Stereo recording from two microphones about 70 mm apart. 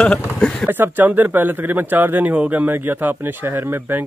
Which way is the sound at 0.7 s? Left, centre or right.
Right.